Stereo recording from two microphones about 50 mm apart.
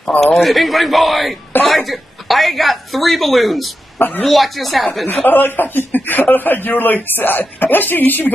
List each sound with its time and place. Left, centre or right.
0.4 s speech: centre
5.0 s speech: left